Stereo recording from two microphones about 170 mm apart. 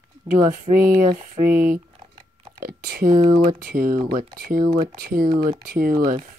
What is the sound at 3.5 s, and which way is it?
Speech, 55° right (ahead or behind).